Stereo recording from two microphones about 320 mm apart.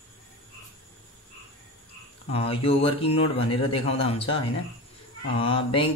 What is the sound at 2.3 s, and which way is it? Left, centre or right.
A man's voice, centre.